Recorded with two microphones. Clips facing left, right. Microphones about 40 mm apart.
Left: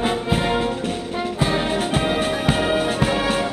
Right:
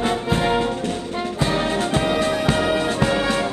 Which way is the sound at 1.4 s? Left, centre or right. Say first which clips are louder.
Even; centre.